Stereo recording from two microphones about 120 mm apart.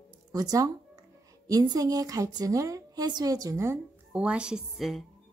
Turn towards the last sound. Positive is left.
turn(degrees=0)  # may be behind; listen again after turning